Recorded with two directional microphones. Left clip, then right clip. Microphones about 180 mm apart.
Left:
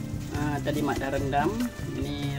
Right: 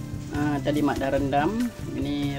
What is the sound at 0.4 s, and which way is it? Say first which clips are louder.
Speech: right 4 dB; 25° right (ahead or behind).